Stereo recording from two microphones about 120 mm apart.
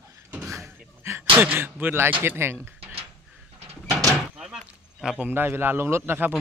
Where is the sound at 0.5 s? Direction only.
25° right (ahead or behind).